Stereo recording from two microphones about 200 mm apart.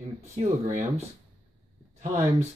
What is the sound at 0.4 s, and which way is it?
Speech, 35° right (ahead or behind).